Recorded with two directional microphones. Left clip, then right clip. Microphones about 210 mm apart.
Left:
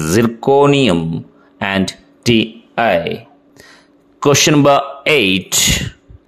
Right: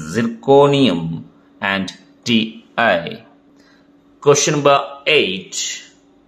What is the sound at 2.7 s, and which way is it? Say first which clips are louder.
Speech: left 1 dB; 15° left (ahead or behind).